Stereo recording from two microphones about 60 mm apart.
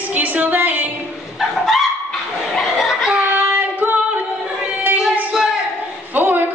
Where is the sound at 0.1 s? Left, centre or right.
Right.